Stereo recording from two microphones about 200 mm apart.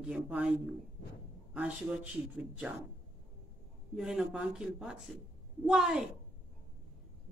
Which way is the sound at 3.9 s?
5° right (ahead or behind).